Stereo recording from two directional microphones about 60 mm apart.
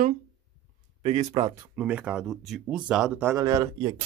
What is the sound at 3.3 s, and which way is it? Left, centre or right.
Speech, right.